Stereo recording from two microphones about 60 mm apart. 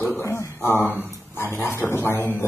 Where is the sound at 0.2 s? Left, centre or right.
Left.